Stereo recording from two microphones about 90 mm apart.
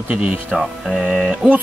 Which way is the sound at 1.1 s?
15° right (ahead or behind).